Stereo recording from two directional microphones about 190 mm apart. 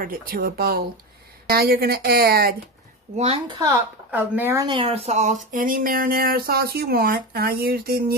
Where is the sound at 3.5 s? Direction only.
15° right (ahead or behind).